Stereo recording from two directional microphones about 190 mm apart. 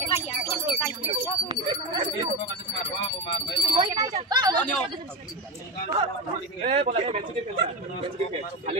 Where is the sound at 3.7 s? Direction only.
20° right (ahead or behind).